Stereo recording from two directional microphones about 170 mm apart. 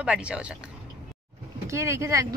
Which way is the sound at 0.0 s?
5° right (ahead or behind).